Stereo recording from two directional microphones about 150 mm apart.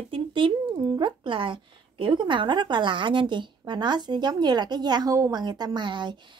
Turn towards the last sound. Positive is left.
turn(degrees=-30)  # may be behind; listen again after turning